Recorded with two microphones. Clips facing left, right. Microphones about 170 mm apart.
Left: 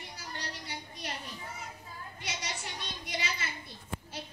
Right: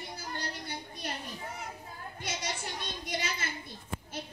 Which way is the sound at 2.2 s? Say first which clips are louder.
Right 3 dB; 50° right (ahead or behind).